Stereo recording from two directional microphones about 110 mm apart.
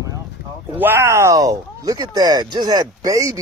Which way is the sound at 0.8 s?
20° right (ahead or behind).